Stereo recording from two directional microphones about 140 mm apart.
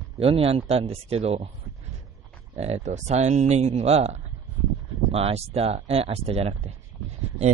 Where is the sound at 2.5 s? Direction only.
50° right (ahead or behind).